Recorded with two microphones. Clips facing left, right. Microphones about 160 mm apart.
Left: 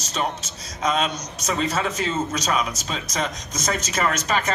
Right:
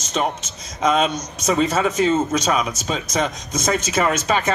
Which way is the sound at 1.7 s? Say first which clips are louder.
Right 7 dB; 50° right (ahead or behind).